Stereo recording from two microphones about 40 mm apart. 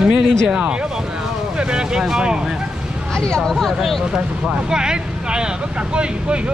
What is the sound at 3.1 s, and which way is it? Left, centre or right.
Speech, centre.